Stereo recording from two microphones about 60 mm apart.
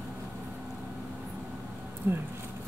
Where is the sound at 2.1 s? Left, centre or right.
Right.